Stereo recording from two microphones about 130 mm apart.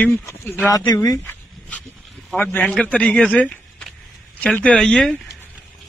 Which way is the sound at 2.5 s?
10° left (ahead or behind).